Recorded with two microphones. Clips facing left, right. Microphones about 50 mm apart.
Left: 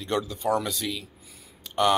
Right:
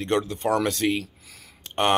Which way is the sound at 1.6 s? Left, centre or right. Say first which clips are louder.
Even; right.